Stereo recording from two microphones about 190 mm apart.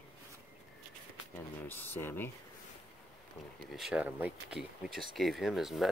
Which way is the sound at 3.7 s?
Centre (ahead or behind).